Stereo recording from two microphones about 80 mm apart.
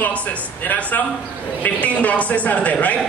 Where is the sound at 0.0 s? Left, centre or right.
Centre.